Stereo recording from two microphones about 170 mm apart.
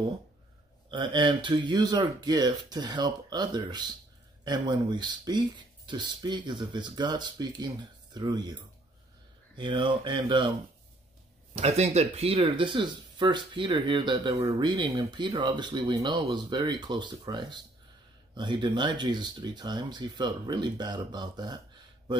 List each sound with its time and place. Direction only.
0.8 s speech: 25° right (ahead or behind)
9.6 s speech: 30° right (ahead or behind)
11.5 s speech: 40° right (ahead or behind)